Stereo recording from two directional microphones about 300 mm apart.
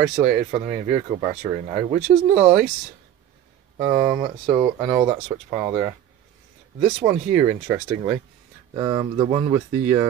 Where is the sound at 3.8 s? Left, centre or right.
Centre.